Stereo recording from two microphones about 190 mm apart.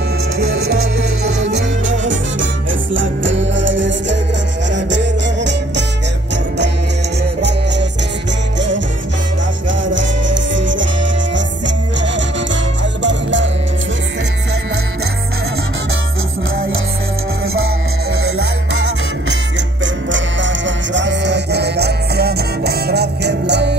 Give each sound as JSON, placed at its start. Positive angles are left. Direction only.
{"t": 2.0, "sound": "music", "side_deg": -80}
{"t": 8.5, "sound": "music", "side_deg": -70}
{"t": 13.0, "sound": "music", "side_deg": -70}
{"t": 18.1, "sound": "music", "side_deg": -90}